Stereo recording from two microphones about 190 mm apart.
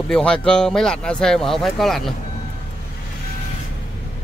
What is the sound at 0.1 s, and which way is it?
Speech, 5° left (ahead or behind).